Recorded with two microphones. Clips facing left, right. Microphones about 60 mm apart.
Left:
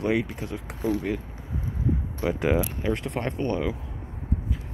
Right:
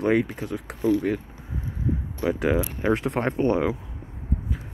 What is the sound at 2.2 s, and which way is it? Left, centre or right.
Speech, centre.